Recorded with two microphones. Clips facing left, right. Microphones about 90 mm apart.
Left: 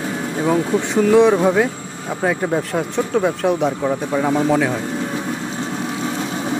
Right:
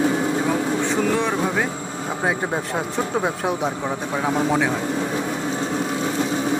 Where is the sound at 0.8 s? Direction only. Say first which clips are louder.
Left 12 dB; 15° left (ahead or behind).